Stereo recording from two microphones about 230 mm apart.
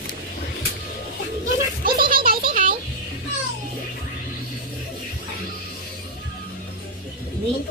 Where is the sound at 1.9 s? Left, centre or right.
Right.